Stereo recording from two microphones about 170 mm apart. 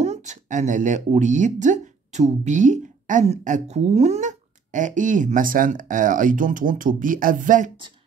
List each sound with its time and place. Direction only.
0.0 s speech: 40° right (ahead or behind)